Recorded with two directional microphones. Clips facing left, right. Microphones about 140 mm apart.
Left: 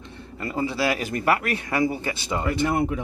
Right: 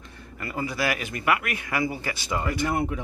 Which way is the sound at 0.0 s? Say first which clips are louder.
Left 4 dB; 25° left (ahead or behind).